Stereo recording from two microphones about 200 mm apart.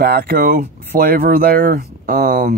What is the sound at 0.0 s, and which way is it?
Speech, 50° right (ahead or behind).